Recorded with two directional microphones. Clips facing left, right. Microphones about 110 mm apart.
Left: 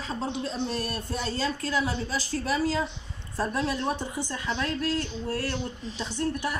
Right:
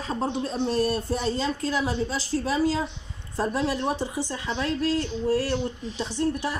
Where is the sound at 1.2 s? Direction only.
20° right (ahead or behind).